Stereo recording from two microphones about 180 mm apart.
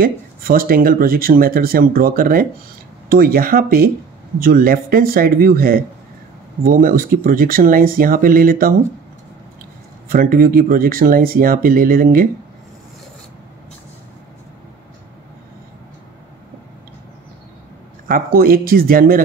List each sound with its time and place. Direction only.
0.0 s speech: 55° right (ahead or behind)
10.0 s speech: 55° right (ahead or behind)
18.0 s speech: 55° right (ahead or behind)